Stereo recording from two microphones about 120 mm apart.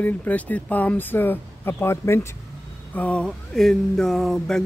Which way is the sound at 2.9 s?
10° left (ahead or behind).